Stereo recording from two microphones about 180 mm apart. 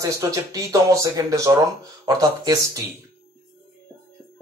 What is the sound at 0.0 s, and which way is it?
Speech, 20° right (ahead or behind).